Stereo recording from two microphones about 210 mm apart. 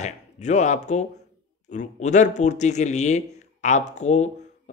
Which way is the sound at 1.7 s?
35° left (ahead or behind).